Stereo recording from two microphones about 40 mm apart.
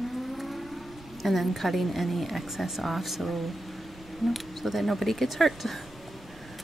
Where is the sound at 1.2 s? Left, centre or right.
Centre.